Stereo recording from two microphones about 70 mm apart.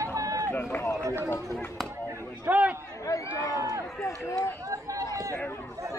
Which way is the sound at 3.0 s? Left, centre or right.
Left.